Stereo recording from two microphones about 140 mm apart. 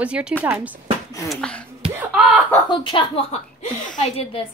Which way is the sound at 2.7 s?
35° left (ahead or behind).